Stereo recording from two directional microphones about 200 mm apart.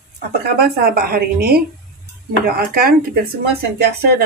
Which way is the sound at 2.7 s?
50° right (ahead or behind).